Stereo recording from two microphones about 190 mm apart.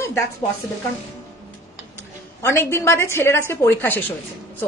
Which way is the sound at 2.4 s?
15° left (ahead or behind).